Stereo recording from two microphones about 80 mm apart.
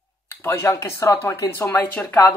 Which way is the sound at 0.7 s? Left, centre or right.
Left.